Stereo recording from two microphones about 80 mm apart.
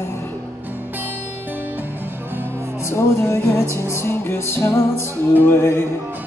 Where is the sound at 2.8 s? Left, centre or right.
Left.